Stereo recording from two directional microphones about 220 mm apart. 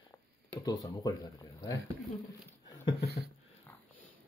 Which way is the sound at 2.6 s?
20° left (ahead or behind).